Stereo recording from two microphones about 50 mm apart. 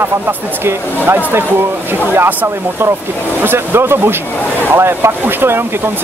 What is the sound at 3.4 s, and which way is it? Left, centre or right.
Speech, right.